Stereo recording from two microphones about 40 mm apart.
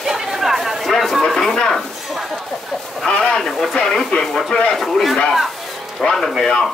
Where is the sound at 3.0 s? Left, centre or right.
Centre.